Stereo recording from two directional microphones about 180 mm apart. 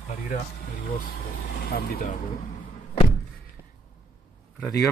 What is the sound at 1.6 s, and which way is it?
Speech, 55° left (ahead or behind).